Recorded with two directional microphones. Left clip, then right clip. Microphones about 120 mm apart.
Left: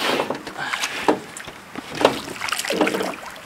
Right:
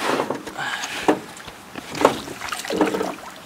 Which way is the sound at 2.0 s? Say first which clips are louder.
Even; 15° left (ahead or behind).